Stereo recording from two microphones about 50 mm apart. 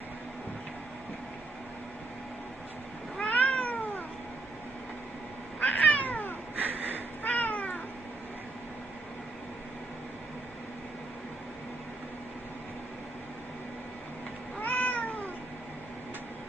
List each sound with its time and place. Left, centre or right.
3.2 s cat: left
5.6 s cat: left
6.6 s a sound: right
7.2 s cat: left
14.6 s cat: left